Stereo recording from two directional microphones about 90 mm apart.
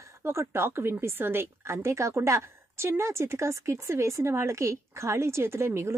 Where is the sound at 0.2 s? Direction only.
30° right (ahead or behind).